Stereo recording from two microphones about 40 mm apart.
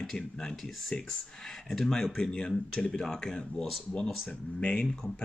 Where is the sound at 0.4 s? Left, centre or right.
Centre.